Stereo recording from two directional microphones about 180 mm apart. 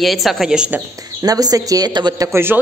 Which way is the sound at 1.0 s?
20° right (ahead or behind).